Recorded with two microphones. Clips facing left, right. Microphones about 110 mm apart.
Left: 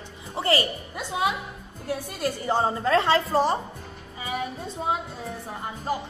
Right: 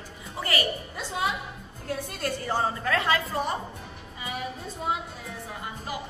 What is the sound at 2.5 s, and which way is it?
A woman's voice, 25° left (ahead or behind).